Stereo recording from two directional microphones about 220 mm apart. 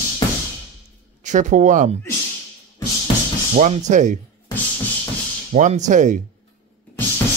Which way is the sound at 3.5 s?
30° right (ahead or behind).